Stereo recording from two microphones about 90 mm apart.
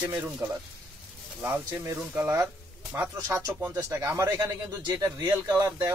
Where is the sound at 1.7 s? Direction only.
30° right (ahead or behind).